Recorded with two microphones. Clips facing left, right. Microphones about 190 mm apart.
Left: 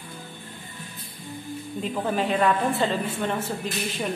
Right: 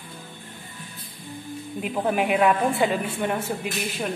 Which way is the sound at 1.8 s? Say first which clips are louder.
Right 2 dB; 10° right (ahead or behind).